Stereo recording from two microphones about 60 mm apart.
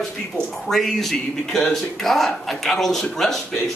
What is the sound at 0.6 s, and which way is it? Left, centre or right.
A man's voice, centre.